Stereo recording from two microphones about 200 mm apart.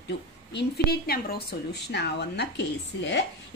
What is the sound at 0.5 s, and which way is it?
Speech, 55° left (ahead or behind).